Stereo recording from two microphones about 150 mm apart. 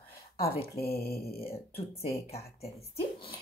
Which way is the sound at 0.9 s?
90° left.